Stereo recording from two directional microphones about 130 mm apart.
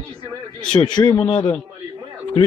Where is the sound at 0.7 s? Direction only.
35° left (ahead or behind).